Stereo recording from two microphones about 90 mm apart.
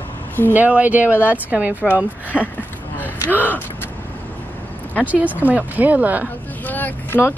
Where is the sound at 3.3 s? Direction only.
20° left (ahead or behind).